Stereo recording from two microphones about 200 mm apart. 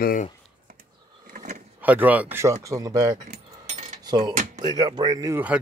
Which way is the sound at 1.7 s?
10° right (ahead or behind).